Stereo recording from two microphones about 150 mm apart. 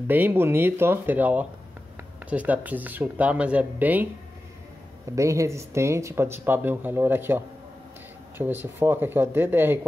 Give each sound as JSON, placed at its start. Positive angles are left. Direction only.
{"t": 0.1, "sound": "speech", "side_deg": -15}